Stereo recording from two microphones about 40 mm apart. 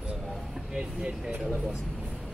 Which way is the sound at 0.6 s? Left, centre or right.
Centre.